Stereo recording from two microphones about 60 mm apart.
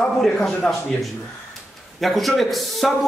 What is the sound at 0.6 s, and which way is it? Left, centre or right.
Speech, left.